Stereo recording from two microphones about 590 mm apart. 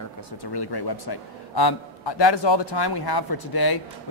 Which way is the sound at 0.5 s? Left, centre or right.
Left.